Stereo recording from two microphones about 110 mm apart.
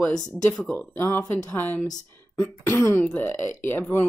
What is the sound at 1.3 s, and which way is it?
Speech, 15° left (ahead or behind).